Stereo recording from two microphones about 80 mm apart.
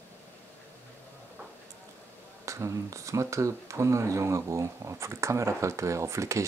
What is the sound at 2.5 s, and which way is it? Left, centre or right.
Speech, right.